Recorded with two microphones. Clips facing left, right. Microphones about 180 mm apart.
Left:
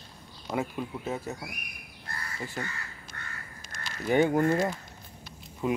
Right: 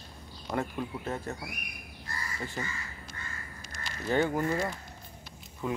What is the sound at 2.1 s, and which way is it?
Crow, 55° left (ahead or behind).